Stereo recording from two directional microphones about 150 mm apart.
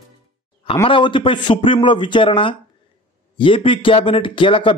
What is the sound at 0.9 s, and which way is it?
A man's voice, 35° left (ahead or behind).